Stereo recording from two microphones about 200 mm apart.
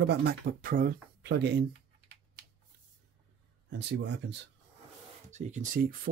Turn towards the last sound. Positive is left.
turn(degrees=-40)  # may be behind; listen again after turning